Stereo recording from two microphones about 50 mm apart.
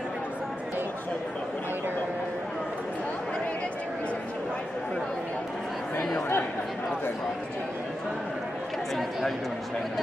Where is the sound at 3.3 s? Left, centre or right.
Left.